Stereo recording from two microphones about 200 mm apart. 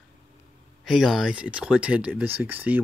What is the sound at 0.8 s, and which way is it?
Speech, centre (ahead or behind).